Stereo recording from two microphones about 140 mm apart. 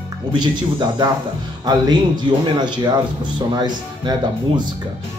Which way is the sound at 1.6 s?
30° right (ahead or behind).